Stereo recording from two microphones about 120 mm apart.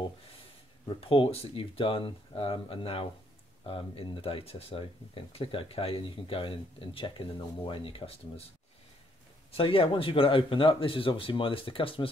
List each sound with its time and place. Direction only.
0.8 s speech: 50° left (ahead or behind)
9.5 s speech: 50° left (ahead or behind)